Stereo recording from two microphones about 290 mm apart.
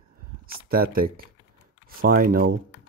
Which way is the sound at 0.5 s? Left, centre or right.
Right.